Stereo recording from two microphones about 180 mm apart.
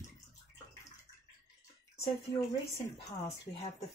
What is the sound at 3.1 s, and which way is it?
Speech, 30° left (ahead or behind).